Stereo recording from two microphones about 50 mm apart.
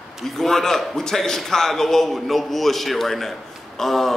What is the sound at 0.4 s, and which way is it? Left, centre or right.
A man's voice, centre.